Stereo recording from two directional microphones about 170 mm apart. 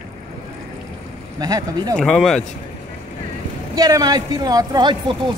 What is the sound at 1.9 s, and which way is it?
Speech, 5° left (ahead or behind).